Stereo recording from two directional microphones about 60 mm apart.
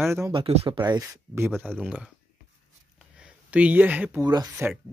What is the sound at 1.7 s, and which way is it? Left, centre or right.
Speech, right.